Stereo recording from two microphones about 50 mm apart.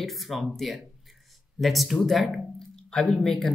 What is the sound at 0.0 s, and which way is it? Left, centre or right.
Speech, centre.